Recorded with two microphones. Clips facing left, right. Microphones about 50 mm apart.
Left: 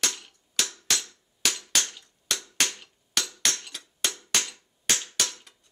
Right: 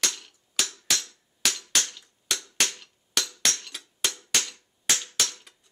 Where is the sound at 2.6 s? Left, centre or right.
Centre.